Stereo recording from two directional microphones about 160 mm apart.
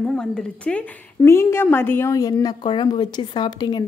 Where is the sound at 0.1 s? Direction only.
5° left (ahead or behind).